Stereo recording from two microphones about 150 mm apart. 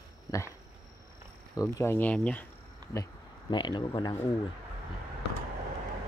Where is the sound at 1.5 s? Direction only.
15° left (ahead or behind).